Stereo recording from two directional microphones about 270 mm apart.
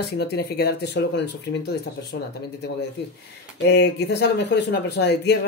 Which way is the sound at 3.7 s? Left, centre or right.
Left.